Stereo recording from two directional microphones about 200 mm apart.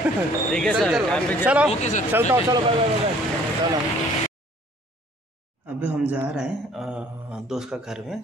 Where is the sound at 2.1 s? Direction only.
10° right (ahead or behind).